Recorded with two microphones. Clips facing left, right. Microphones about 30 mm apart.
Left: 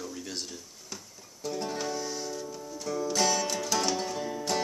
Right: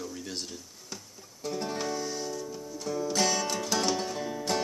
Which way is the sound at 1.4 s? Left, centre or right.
Centre.